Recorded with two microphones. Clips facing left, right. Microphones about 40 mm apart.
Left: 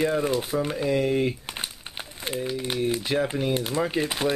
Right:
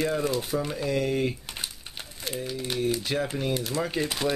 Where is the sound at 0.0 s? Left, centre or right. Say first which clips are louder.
Left 3 dB; left.